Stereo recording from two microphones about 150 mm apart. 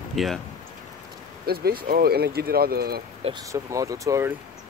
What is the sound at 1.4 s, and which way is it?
Speech, 90° right.